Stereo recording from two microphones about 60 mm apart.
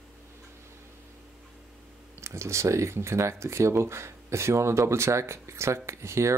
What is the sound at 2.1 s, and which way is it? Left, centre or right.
Speech, right.